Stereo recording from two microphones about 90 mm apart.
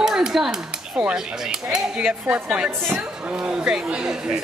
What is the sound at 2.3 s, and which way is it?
Speech, 15° right (ahead or behind).